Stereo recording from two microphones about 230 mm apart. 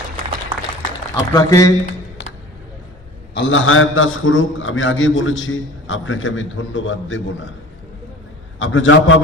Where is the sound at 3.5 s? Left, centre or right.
Left.